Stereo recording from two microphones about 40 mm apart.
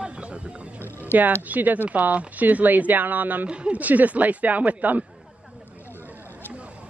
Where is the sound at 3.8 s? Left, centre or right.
Right.